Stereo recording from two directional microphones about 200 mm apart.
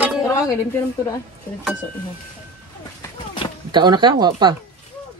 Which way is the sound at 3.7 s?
20° right (ahead or behind).